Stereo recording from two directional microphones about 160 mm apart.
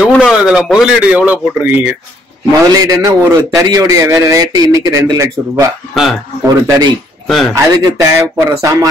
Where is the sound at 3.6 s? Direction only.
20° right (ahead or behind).